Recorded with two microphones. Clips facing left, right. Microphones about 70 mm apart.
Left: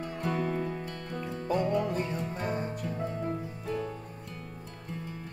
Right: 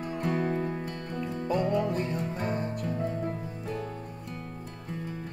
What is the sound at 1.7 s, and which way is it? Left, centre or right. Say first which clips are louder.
Music: right 1 dB; centre.